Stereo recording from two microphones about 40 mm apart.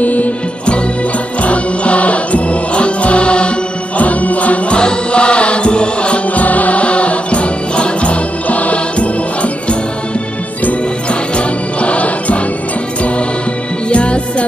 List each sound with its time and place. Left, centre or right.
0.0 s music: left
1.4 s mantra: left
4.0 s music: left
4.7 s music: left
6.3 s music: left
11.3 s music: left
13.8 s music: left